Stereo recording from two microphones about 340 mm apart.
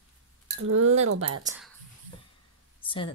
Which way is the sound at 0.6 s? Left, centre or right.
Right.